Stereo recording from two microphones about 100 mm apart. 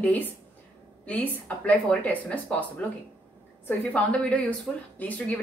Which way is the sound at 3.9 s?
10° left (ahead or behind).